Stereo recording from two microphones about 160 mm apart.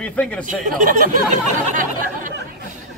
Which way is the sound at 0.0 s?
10° left (ahead or behind).